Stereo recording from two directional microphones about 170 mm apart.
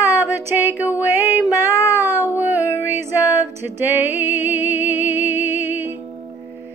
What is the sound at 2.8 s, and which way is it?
Music, 15° right (ahead or behind).